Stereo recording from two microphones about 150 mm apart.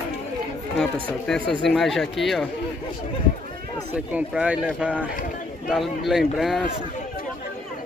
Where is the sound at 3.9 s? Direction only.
10° right (ahead or behind).